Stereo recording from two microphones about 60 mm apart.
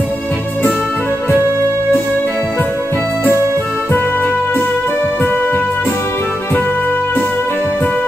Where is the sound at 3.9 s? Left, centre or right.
Left.